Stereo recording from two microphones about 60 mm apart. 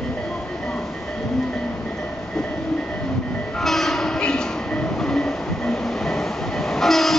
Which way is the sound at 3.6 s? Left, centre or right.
Centre.